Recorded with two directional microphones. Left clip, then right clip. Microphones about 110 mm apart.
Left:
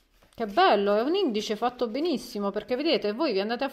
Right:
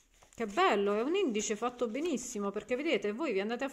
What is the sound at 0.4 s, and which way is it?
Speech, 30° left (ahead or behind).